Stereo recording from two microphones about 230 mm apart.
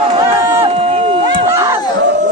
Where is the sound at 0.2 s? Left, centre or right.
Centre.